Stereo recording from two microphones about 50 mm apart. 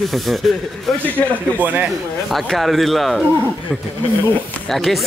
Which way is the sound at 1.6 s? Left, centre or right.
Right.